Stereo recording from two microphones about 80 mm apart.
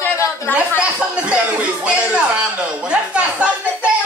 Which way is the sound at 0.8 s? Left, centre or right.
Centre.